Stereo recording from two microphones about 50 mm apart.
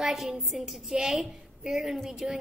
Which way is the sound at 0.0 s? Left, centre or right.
Centre.